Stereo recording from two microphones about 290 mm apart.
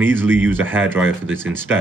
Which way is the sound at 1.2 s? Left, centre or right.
Right.